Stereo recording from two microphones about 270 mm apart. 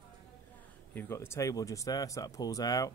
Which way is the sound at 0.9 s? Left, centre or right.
Centre.